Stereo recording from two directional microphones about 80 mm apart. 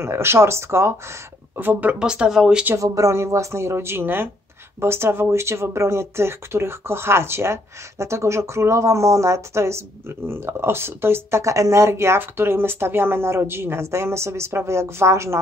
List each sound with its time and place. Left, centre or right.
0.0 s speech: right
1.6 s speech: right
2.8 s speech: right